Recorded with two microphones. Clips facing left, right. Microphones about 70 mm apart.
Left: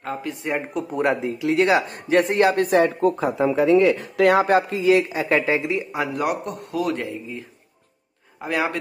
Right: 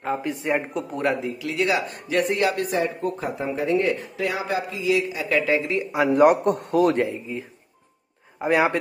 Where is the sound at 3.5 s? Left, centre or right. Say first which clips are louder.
Left 5 dB; left.